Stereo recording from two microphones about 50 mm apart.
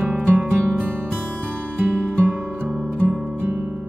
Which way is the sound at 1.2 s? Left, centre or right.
Right.